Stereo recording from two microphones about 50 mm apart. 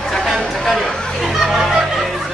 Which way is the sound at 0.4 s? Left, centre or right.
Centre.